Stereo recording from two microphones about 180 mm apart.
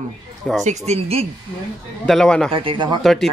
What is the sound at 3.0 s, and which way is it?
Speech, centre (ahead or behind).